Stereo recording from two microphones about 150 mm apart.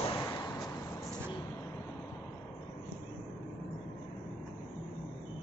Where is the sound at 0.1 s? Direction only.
25° left (ahead or behind).